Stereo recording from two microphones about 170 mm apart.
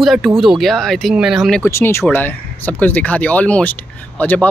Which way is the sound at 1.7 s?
15° left (ahead or behind).